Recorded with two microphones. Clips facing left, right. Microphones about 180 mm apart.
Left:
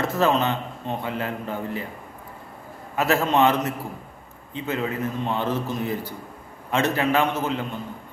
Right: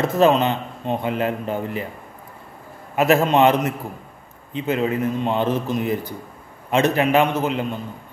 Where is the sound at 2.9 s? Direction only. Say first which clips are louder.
Right 5 dB; 15° right (ahead or behind).